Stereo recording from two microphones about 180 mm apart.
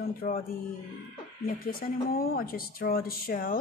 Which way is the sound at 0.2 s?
50° left (ahead or behind).